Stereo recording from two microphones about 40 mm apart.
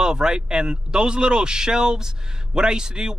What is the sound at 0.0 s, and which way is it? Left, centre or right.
A man's voice, centre.